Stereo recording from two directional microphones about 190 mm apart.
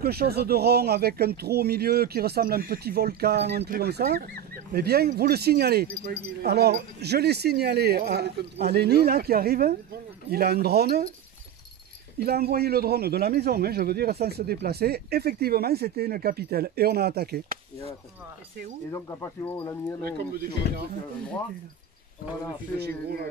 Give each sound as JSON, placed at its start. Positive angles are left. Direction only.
{"t": 0.0, "sound": "speech", "side_deg": -55}
{"t": 12.2, "sound": "speech", "side_deg": -55}
{"t": 18.9, "sound": "speech", "side_deg": 15}
{"t": 20.0, "sound": "speech", "side_deg": -55}
{"t": 20.6, "sound": "speech", "side_deg": 60}
{"t": 22.8, "sound": "speech", "side_deg": -55}